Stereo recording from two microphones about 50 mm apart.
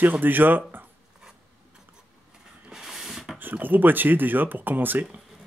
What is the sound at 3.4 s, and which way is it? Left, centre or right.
Speech, right.